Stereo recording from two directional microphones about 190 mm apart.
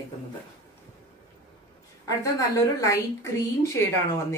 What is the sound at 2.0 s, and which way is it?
Speech, 15° left (ahead or behind).